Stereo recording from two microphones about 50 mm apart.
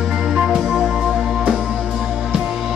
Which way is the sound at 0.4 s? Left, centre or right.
Right.